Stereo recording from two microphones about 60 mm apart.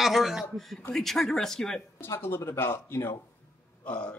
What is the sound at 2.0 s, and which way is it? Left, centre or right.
Speech, left.